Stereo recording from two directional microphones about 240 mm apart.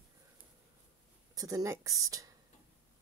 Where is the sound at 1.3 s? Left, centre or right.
Centre.